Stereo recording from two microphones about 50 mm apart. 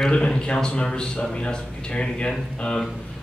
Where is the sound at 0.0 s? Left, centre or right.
Centre.